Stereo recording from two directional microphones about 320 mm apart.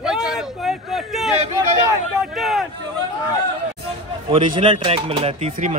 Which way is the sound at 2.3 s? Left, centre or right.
Centre.